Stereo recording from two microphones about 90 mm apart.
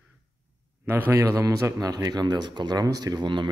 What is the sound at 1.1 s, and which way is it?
A man's voice, 35° right (ahead or behind).